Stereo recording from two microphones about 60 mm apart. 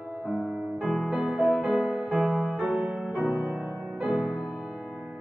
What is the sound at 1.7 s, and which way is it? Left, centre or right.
Music, centre.